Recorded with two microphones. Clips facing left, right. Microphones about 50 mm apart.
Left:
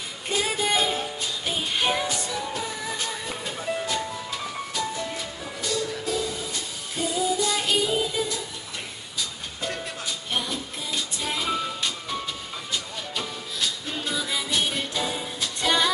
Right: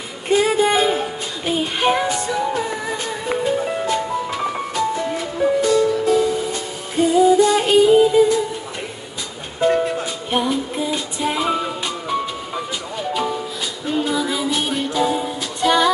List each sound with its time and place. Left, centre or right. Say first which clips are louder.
0.3 s music: right 9 dB; right
9.6 s music: right 15 dB; right